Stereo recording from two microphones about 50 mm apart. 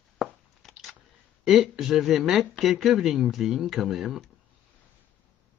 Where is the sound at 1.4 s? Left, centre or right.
Centre.